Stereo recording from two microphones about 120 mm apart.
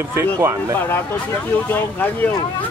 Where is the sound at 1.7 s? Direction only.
15° left (ahead or behind).